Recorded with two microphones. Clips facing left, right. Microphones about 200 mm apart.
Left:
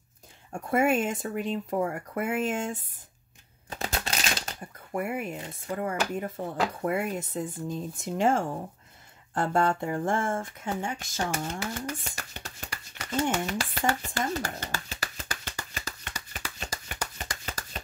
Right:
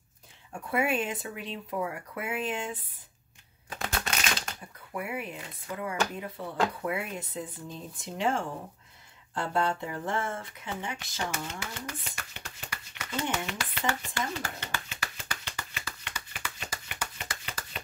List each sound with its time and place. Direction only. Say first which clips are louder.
0.5 s speech: left 4 dB; 45° left (ahead or behind)
3.7 s typewriter: left 1 dB; 25° left (ahead or behind)
4.9 s speech: left 4 dB; 45° left (ahead or behind)
13.6 s a sound: left 4 dB; 45° left (ahead or behind)